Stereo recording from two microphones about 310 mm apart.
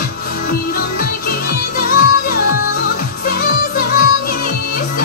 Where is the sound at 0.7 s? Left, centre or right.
Left.